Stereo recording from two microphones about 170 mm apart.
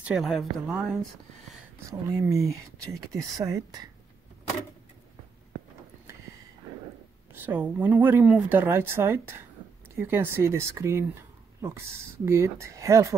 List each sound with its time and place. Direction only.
0.0 s speech: 5° right (ahead or behind)
1.9 s speech: 20° right (ahead or behind)
7.3 s speech: 10° right (ahead or behind)
12.3 s speech: 15° right (ahead or behind)